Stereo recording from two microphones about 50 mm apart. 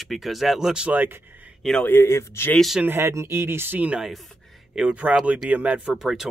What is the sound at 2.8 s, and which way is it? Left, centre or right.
Speech, right.